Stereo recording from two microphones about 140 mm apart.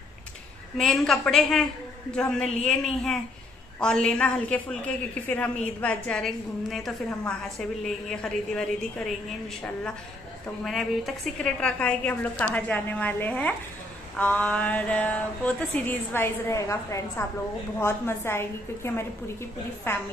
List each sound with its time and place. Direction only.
0.7 s a woman's voice: centre (ahead or behind)
10.6 s a woman's voice: centre (ahead or behind); by 20.0 s 15° left (ahead or behind)